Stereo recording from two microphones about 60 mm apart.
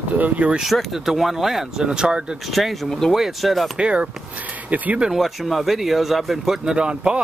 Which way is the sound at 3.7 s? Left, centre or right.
Centre.